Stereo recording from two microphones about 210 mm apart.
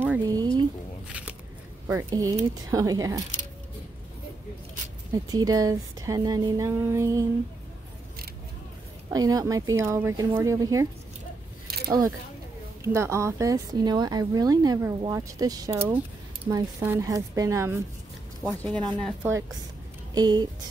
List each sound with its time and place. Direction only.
0.0 s a sound: 15° right (ahead or behind)
1.0 s a sound: 5° right (ahead or behind)
1.9 s speech: 15° right (ahead or behind)
5.1 s speech: 15° right (ahead or behind)
9.1 s speech: 15° right (ahead or behind)
11.6 s a sound: 45° right (ahead or behind)
12.8 s speech: 15° right (ahead or behind)
18.4 s speech: centre (ahead or behind)
20.2 s speech: 20° right (ahead or behind)